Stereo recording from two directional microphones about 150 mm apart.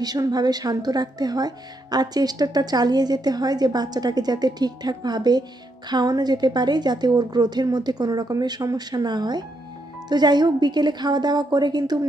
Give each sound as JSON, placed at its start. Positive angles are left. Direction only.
{"t": 0.0, "sound": "speech", "side_deg": -25}